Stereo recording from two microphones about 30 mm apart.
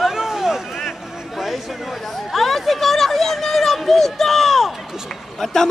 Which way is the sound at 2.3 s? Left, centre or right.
Centre.